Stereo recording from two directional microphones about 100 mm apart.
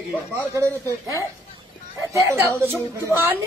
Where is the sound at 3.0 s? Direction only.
25° right (ahead or behind).